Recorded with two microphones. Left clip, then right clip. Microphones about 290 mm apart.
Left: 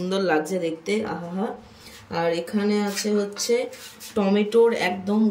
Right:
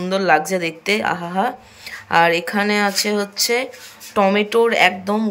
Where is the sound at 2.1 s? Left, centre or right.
Centre.